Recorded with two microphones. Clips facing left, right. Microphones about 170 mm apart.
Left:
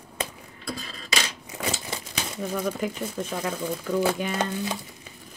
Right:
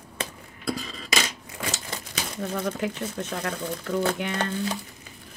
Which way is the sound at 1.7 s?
5° left (ahead or behind).